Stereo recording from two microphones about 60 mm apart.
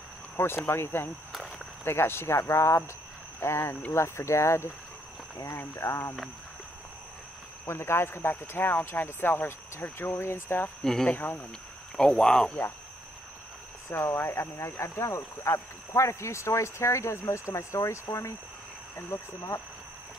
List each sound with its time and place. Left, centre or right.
0.4 s speech: left
1.3 s walk: centre
1.9 s speech: left
7.6 s speech: left
10.8 s speech: centre
13.8 s speech: left